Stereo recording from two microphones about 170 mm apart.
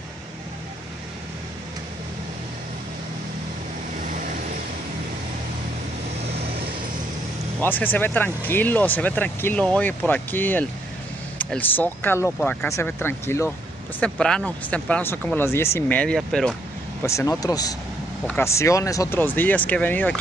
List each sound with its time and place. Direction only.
7.6 s speech: 10° left (ahead or behind)
17.0 s speech: 15° left (ahead or behind)